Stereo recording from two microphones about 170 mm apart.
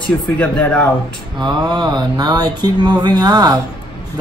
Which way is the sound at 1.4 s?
25° right (ahead or behind).